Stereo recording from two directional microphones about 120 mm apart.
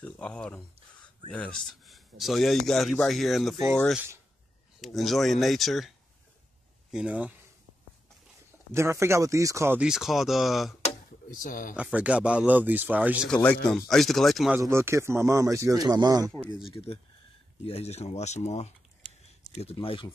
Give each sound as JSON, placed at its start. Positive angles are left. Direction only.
{"t": 0.0, "sound": "a man's voice", "side_deg": 10}
{"t": 4.8, "sound": "a man's voice", "side_deg": 0}
{"t": 8.7, "sound": "speech", "side_deg": -20}
{"t": 9.8, "sound": "a man's voice", "side_deg": -5}
{"t": 13.3, "sound": "a man's voice", "side_deg": 10}
{"t": 14.6, "sound": "speech", "side_deg": -20}
{"t": 16.6, "sound": "speech", "side_deg": 55}
{"t": 19.5, "sound": "speech", "side_deg": 55}